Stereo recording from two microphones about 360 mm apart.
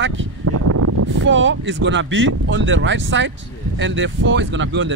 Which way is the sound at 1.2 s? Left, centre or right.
Right.